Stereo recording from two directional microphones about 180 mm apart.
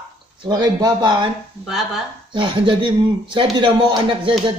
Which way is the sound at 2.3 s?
25° right (ahead or behind).